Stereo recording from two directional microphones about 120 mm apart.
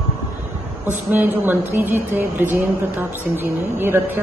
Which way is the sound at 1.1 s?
15° right (ahead or behind).